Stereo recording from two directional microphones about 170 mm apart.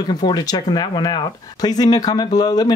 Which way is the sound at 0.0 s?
25° left (ahead or behind).